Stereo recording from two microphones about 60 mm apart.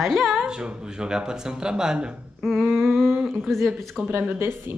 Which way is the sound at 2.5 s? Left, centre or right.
Centre.